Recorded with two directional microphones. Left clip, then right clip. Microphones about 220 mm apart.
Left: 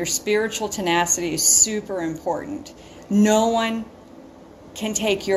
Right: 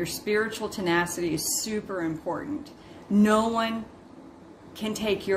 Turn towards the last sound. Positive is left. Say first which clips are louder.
# left 5 dB
turn(degrees=-15)  # may be behind; listen again after turning